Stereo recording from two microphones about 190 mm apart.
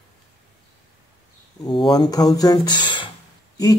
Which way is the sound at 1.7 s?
25° left (ahead or behind).